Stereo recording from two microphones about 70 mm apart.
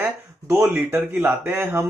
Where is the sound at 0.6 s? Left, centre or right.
Right.